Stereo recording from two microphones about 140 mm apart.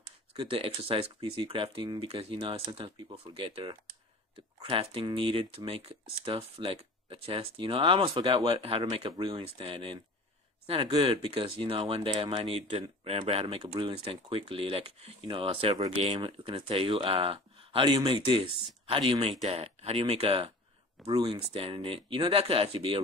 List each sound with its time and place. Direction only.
0.3 s speech: 40° right (ahead or behind)